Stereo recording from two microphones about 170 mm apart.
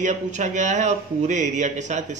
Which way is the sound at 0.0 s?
45° right (ahead or behind).